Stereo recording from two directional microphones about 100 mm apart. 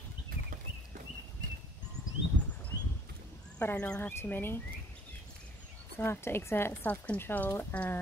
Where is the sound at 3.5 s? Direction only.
15° left (ahead or behind).